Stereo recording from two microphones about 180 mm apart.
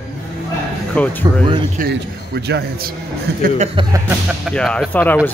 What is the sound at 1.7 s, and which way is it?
A man's voice, 65° right (ahead or behind).